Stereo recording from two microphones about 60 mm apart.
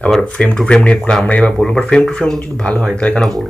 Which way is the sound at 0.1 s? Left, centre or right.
Centre.